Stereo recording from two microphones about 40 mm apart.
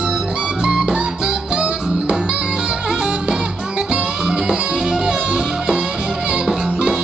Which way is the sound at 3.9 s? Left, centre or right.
Right.